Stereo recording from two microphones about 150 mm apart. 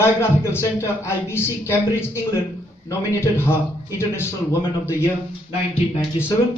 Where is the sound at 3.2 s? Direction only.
15° left (ahead or behind).